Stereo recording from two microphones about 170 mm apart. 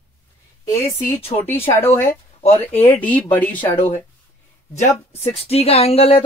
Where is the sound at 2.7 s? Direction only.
35° left (ahead or behind).